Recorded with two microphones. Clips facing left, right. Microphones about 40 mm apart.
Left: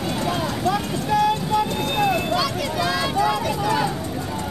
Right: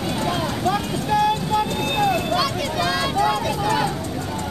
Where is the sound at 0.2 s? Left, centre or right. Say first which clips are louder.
Right 1 dB; centre.